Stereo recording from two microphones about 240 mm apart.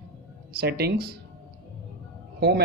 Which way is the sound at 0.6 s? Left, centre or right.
Right.